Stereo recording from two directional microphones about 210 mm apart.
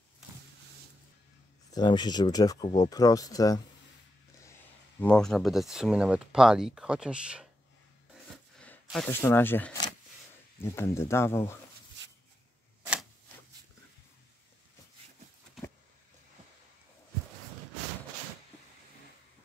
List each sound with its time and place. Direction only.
1.7 s speech: 20° left (ahead or behind)
5.0 s speech: 5° left (ahead or behind)
8.8 s speech: 5° left (ahead or behind)